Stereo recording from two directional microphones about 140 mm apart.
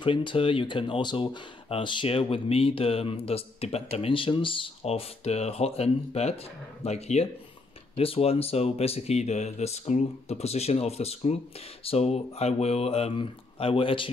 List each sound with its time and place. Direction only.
0.0 s speech: 35° left (ahead or behind)